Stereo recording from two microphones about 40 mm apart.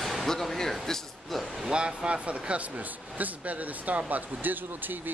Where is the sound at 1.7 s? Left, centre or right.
Right.